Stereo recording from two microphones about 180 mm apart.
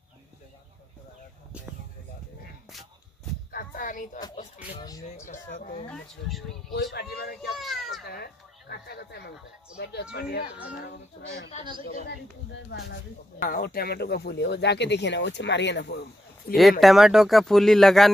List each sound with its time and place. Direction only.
3.5 s a sound: 50° left (ahead or behind)
4.7 s speech: 20° left (ahead or behind)
5.3 s speech: 45° left (ahead or behind)
5.9 s speech: centre (ahead or behind)
6.7 s speech: 60° left (ahead or behind)
7.5 s speech: centre (ahead or behind)
8.0 s speech: 60° left (ahead or behind)
11.8 s speech: 60° left (ahead or behind)
16.8 s speech: centre (ahead or behind)